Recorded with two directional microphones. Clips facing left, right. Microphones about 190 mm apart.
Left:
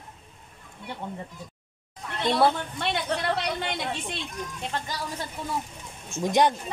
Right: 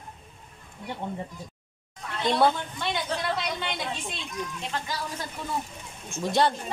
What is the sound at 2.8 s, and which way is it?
A woman's voice, 65° left (ahead or behind).